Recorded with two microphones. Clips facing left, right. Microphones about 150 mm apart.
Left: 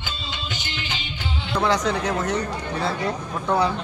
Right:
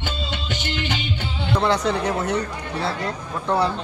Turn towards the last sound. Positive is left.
turn(degrees=0)  # may be behind; listen again after turning